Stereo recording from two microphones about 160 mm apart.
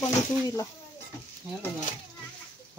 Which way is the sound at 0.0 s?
20° left (ahead or behind).